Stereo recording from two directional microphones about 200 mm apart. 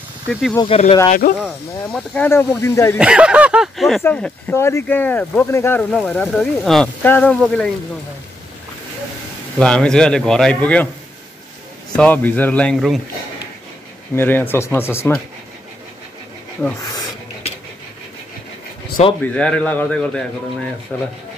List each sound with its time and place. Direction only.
0.3 s speech: centre (ahead or behind)
0.6 s speech: 30° left (ahead or behind)
1.4 s speech: 5° left (ahead or behind)
3.0 s speech: 5° right (ahead or behind)
9.6 s speech: 5° left (ahead or behind)
11.9 s speech: 5° left (ahead or behind)
14.1 s speech: 10° left (ahead or behind)
16.6 s speech: 5° left (ahead or behind)
19.0 s speech: 35° left (ahead or behind)
19.3 s speech: 5° left (ahead or behind)